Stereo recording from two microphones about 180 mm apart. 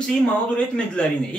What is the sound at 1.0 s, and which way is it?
Speech, 5° left (ahead or behind).